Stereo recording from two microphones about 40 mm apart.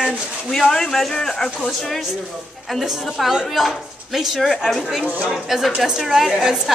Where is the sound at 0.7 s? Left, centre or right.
Centre.